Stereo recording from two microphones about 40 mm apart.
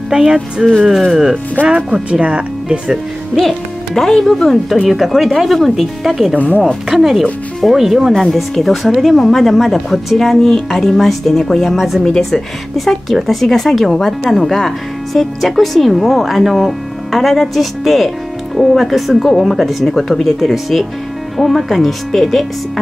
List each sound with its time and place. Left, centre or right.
0.1 s speech: centre
1.6 s speech: left
2.0 s speech: right
3.3 s speech: centre
6.3 s speech: left
6.9 s speech: centre